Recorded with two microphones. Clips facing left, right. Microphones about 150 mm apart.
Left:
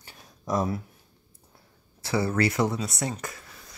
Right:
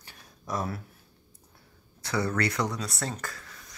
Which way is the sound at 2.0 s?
25° left (ahead or behind).